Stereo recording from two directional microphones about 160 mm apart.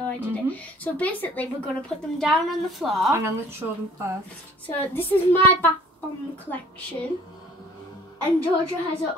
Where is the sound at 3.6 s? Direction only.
15° right (ahead or behind).